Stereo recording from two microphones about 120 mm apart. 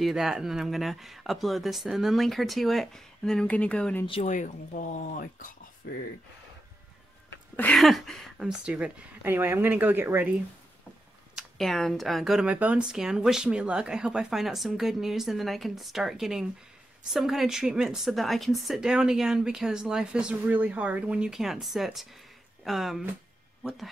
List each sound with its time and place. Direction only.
0.0 s speech: 5° right (ahead or behind)
4.2 s speech: 90° left
7.7 s speech: centre (ahead or behind); by 10.3 s 20° right (ahead or behind)
11.3 s speech: centre (ahead or behind)